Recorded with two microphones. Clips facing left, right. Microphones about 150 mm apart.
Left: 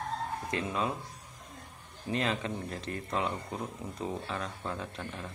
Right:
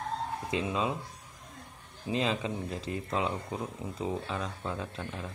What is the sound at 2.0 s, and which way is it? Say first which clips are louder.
A man's voice: right 1 dB; 15° right (ahead or behind).